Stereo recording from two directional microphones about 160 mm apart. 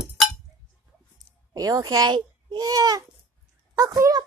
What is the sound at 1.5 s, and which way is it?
A child's voice, 25° right (ahead or behind).